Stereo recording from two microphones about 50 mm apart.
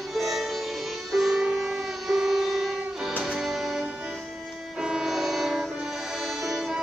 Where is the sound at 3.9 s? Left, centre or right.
Centre.